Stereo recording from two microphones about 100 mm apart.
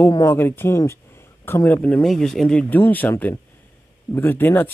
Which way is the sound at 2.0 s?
5° left (ahead or behind).